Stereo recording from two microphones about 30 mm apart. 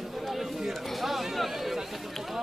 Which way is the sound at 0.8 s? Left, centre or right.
Centre.